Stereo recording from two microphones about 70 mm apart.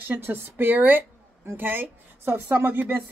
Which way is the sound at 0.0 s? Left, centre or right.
Right.